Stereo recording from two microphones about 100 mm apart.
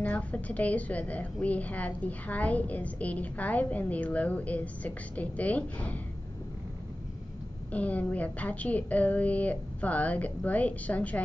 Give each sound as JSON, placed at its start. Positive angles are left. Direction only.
{"t": 0.0, "sound": "a woman's voice", "side_deg": 15}
{"t": 7.7, "sound": "a woman's voice", "side_deg": 15}